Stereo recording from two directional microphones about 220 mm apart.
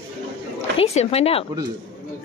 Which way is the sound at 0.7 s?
30° left (ahead or behind).